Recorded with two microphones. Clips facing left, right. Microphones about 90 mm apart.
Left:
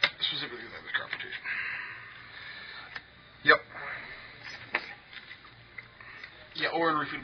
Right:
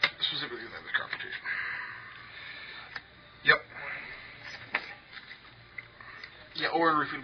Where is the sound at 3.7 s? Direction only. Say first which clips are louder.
Left 1 dB; 25° left (ahead or behind).